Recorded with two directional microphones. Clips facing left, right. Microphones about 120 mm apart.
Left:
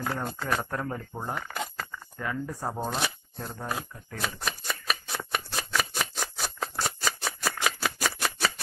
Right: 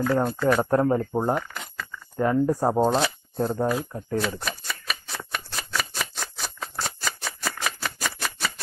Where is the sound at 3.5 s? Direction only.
40° right (ahead or behind).